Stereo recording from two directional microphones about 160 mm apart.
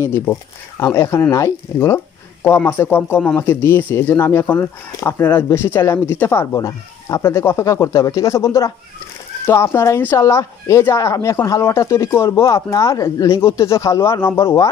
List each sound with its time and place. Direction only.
0.0 s speech: 15° left (ahead or behind)